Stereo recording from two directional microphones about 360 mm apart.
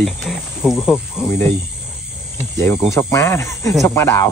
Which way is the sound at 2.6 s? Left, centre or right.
Centre.